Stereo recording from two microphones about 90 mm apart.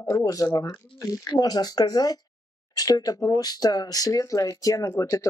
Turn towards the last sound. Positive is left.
turn(degrees=35)  # may be behind; listen again after turning